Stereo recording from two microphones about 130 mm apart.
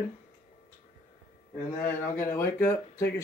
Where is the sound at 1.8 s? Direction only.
15° left (ahead or behind).